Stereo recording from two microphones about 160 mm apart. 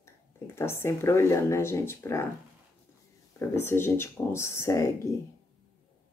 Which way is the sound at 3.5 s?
15° left (ahead or behind).